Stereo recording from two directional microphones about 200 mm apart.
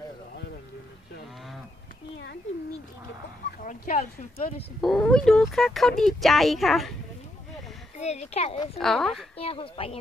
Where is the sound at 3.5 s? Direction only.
45° left (ahead or behind).